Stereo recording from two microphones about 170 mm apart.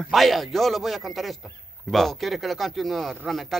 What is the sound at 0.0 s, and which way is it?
Speech, centre (ahead or behind).